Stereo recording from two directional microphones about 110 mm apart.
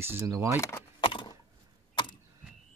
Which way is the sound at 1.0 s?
45° left (ahead or behind).